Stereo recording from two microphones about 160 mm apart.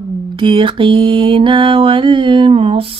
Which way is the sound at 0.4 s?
30° right (ahead or behind).